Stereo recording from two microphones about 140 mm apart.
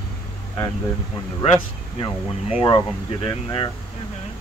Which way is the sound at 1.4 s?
45° left (ahead or behind).